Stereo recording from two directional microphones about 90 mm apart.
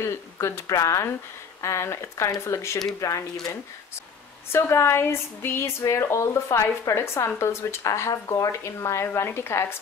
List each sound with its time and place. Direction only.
0.0 s speech: 30° left (ahead or behind)
4.5 s speech: 30° left (ahead or behind)